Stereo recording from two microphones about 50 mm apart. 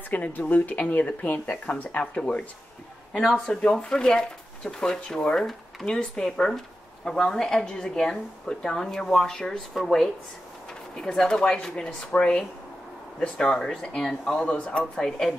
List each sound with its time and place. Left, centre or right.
0.1 s speech: left
3.1 s speech: centre
15.0 s speech: centre